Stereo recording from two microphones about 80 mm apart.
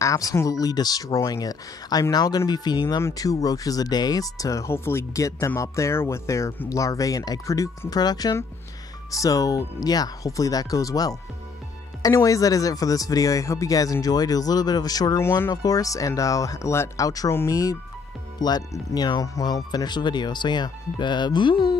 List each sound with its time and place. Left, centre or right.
0.0 s speech: left
3.0 s speech: left
7.9 s speech: left
15.1 s speech: left
15.5 s speech: left
18.4 s speech: left